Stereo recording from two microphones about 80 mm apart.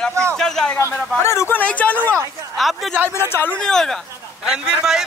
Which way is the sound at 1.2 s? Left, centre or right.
Left.